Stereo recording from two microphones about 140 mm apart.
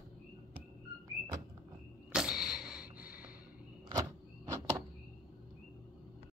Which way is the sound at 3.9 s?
20° right (ahead or behind).